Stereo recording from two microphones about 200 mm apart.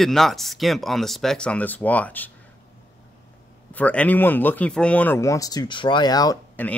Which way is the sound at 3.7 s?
10° left (ahead or behind).